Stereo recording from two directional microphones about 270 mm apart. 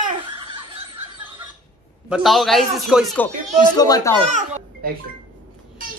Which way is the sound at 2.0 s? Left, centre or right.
Centre.